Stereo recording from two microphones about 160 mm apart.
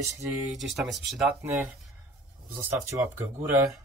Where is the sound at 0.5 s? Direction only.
Centre (ahead or behind).